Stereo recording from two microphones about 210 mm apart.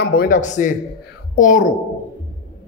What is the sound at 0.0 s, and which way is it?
A man's voice, 45° left (ahead or behind).